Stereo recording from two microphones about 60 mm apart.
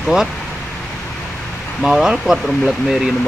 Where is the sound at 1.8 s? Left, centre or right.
Centre.